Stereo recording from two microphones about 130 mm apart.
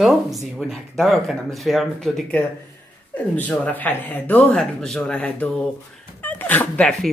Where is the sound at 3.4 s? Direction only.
10° left (ahead or behind).